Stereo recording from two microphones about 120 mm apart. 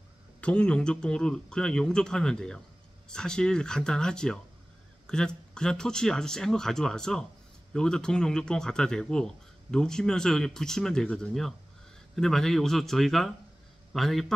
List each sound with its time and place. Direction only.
0.4 s speech: 10° left (ahead or behind)